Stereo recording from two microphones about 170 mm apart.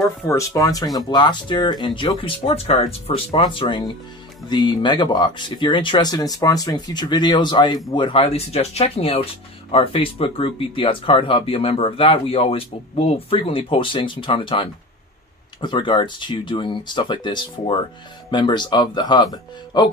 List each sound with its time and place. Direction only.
0.3 s speech: 20° left (ahead or behind)